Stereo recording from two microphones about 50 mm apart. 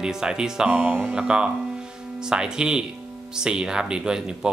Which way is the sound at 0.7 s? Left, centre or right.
Right.